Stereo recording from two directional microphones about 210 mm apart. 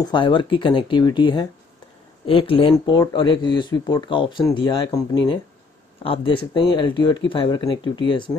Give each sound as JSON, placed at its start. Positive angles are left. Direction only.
{"t": 0.0, "sound": "speech", "side_deg": 20}
{"t": 6.0, "sound": "speech", "side_deg": 25}